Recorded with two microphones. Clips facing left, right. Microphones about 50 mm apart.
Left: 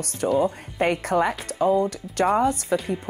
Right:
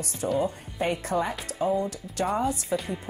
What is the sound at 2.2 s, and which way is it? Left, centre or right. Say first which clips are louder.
Speech: left 6 dB; left.